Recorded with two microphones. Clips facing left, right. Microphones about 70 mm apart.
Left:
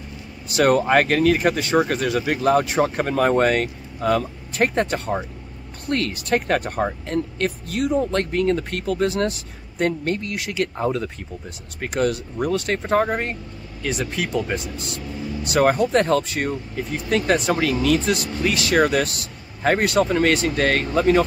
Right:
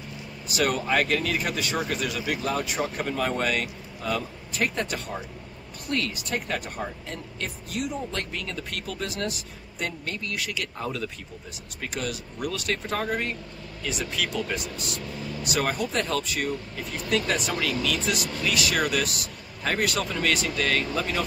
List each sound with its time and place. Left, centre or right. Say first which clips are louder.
0.6 s speech: left 8 dB; left
7.8 s speech: left 11 dB; left